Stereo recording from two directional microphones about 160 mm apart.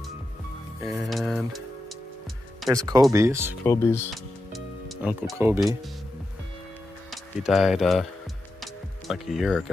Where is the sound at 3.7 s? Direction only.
15° left (ahead or behind).